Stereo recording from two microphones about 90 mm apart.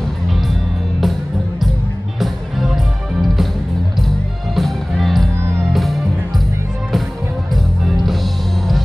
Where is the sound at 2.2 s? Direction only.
Centre (ahead or behind).